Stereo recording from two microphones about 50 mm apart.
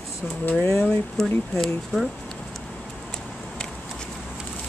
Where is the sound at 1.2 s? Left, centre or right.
Centre.